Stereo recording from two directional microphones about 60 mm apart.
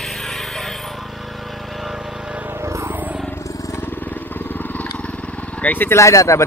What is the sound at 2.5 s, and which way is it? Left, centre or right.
Vehicle, right.